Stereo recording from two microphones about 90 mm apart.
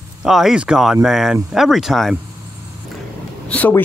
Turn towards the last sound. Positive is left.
turn(degrees=20)  # may be behind; listen again after turning